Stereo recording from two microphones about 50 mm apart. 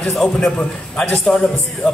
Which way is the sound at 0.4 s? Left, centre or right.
Centre.